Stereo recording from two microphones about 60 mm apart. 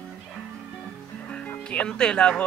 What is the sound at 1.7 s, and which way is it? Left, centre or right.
Speech, centre.